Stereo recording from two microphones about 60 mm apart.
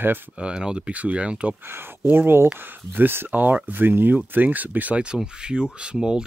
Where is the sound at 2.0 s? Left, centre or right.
Right.